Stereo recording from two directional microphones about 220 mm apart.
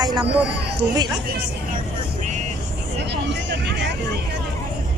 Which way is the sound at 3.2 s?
55° right (ahead or behind).